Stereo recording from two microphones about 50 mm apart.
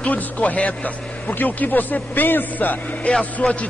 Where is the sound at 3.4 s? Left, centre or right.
Left.